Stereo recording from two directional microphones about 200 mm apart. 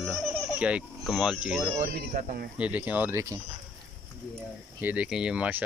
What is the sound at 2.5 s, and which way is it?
Speech, 5° right (ahead or behind).